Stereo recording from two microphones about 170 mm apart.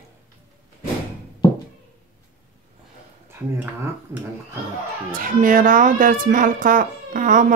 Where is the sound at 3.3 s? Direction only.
15° right (ahead or behind).